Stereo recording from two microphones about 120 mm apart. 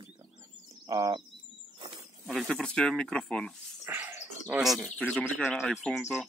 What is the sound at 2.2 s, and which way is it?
Speech, centre (ahead or behind).